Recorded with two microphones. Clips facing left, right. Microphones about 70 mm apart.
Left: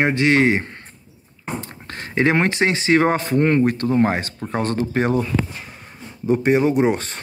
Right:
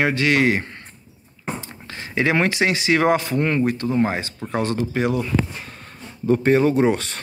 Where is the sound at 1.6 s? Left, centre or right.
Left.